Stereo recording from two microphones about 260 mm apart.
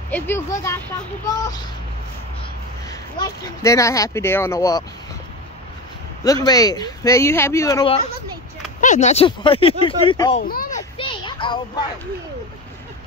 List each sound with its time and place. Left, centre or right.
0.1 s speech: centre
2.9 s speech: centre
6.2 s speech: centre
8.8 s speech: left
10.3 s speech: left
10.8 s a sound: centre